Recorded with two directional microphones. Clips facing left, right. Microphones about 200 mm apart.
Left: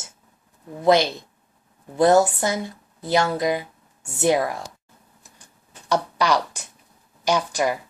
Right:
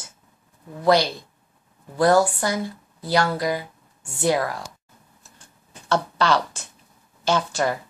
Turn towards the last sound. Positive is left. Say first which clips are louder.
# left 1 dB
turn(degrees=15)  # may be behind; listen again after turning